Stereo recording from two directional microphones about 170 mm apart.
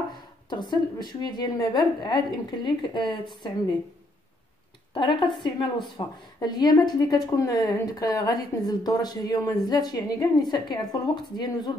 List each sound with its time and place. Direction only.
0.5 s a woman's voice: 25° left (ahead or behind)
4.9 s a woman's voice: 30° left (ahead or behind)